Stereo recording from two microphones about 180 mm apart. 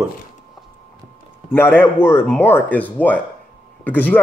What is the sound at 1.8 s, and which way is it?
A man's voice, 10° left (ahead or behind).